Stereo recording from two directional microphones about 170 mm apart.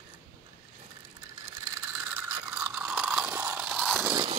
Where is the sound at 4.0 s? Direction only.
20° right (ahead or behind).